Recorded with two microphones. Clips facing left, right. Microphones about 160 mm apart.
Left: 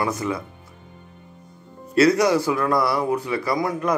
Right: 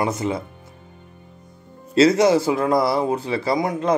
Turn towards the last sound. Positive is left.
turn(degrees=-20)  # may be behind; listen again after turning